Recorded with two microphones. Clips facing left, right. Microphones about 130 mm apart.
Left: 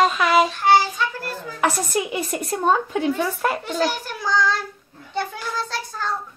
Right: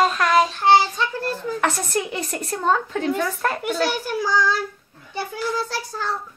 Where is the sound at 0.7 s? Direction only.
25° right (ahead or behind).